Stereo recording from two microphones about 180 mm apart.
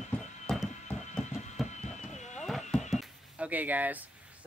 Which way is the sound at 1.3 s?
40° left (ahead or behind).